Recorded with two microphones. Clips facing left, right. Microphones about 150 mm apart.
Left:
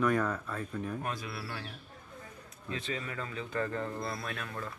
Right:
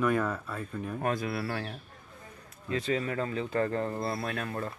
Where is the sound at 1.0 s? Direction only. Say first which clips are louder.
Right 8 dB; 50° right (ahead or behind).